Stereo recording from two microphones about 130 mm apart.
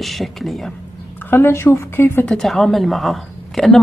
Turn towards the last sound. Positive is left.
turn(degrees=0)  # may be behind; listen again after turning